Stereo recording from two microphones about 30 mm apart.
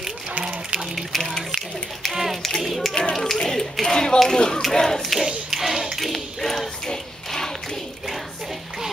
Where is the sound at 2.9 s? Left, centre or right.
Left.